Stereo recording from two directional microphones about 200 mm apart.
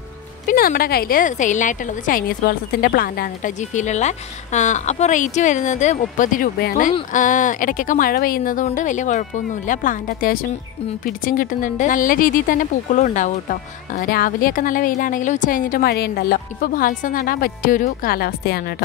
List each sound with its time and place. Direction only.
0.5 s a woman's voice: 45° left (ahead or behind)